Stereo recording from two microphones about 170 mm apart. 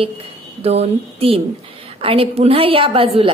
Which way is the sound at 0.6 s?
35° right (ahead or behind).